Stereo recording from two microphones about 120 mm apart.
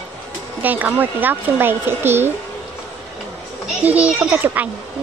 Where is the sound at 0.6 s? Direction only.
15° right (ahead or behind).